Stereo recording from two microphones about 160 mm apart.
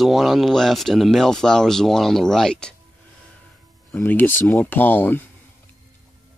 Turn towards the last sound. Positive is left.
turn(degrees=10)  # may be behind; listen again after turning